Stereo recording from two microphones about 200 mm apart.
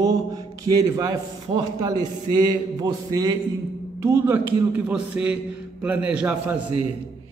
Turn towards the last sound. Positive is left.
turn(degrees=-5)  # may be behind; listen again after turning